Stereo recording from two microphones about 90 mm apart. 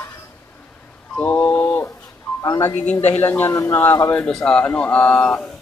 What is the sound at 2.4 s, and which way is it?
Speech, 35° left (ahead or behind).